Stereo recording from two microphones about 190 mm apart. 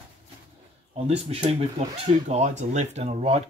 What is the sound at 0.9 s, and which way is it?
Speech, 35° right (ahead or behind).